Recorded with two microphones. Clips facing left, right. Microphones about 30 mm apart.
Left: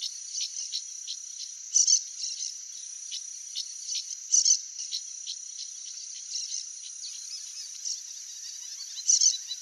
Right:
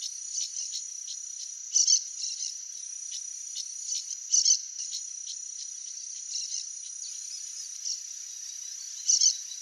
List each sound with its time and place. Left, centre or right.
0.0 s cricket: left
0.7 s insect: left
1.7 s cricket: centre
3.1 s cricket: left
4.3 s cricket: centre
9.0 s a sound: centre